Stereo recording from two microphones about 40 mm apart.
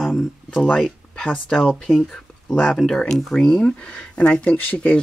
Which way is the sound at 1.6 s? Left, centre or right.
Centre.